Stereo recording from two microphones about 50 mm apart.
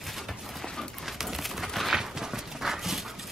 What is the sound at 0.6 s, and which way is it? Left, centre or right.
Dog, centre.